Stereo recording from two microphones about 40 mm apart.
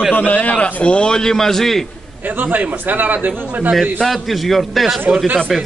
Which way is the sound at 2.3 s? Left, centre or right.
Right.